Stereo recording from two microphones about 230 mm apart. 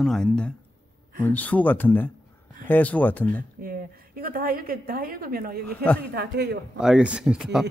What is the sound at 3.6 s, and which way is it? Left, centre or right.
A woman's voice, right.